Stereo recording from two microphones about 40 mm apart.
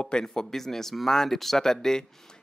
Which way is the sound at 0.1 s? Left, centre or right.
Centre.